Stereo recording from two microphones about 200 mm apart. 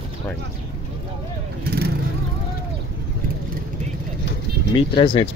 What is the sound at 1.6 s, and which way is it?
Vehicle, 50° right (ahead or behind).